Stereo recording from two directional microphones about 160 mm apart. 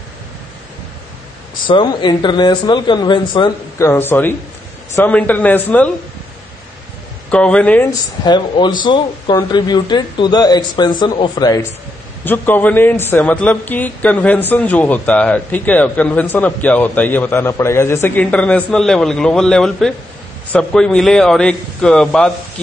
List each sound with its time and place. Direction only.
1.7 s speech: 30° left (ahead or behind)
3.7 s a man's voice: 15° left (ahead or behind)
7.2 s a man's voice: 5° left (ahead or behind)
8.2 s speech: 25° left (ahead or behind)
12.3 s a man's voice: 10° left (ahead or behind)